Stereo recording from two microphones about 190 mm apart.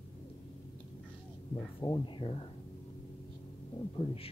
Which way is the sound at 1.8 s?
20° left (ahead or behind).